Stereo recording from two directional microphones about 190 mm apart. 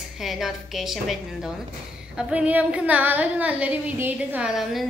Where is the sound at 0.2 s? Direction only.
Centre (ahead or behind).